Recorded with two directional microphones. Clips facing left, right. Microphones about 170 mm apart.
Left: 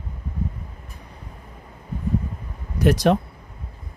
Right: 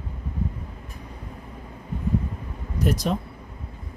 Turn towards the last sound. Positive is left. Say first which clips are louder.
# left 7 dB
turn(degrees=75)  # may be behind; listen again after turning